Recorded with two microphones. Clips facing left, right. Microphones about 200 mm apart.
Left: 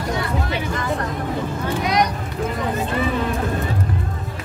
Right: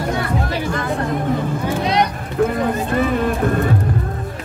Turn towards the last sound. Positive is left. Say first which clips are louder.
# right 4 dB
turn(degrees=-50)  # may be behind; listen again after turning